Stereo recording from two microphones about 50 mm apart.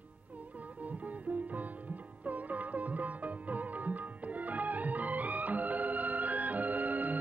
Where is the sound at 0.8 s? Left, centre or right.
Right.